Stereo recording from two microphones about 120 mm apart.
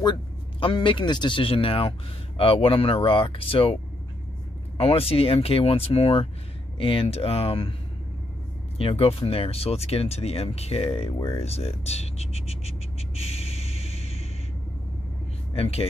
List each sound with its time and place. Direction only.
0.0 s a man's voice: 45° left (ahead or behind)
4.7 s a man's voice: 55° left (ahead or behind)
8.7 s speech: 55° left (ahead or behind)
11.2 s a sound: 55° left (ahead or behind)
15.5 s speech: 55° left (ahead or behind)